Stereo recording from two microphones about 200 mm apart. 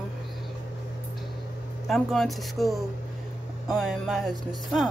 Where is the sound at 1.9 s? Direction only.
Centre (ahead or behind).